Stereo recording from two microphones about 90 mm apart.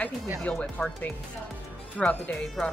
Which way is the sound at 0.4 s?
15° left (ahead or behind).